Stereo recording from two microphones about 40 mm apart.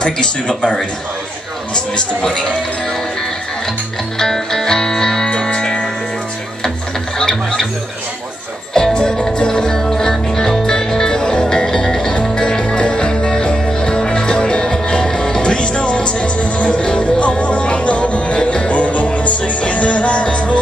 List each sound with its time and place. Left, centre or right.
0.0 s speech: left
2.0 s music: centre
4.2 s music: centre
7.2 s music: centre
8.7 s music: centre
18.7 s music: left